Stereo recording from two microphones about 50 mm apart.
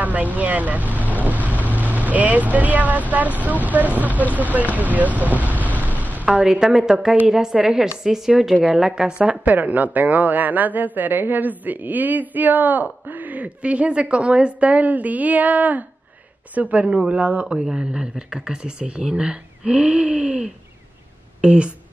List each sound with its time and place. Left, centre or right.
0.0 s speech: right
6.2 s speech: centre
9.2 s speech: right
17.6 s speech: centre